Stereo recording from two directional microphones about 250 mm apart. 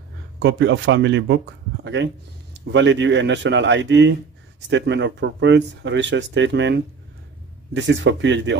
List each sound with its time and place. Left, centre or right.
0.4 s speech: right
2.5 s speech: right